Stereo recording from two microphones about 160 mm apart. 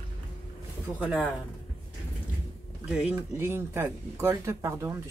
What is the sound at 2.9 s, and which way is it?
Speech, 5° right (ahead or behind).